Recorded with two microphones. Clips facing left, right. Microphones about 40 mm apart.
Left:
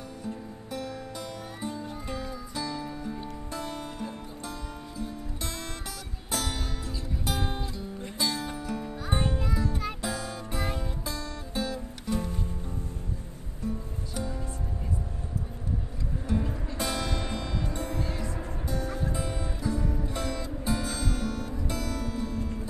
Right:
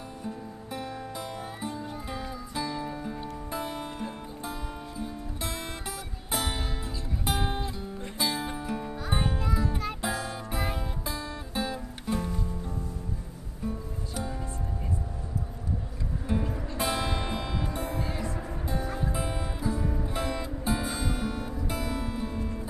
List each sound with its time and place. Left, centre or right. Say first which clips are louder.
0.2 s music: even; centre
8.9 s music: left 2 dB; centre
16.3 s music: even; centre
18.3 s music: right 1 dB; right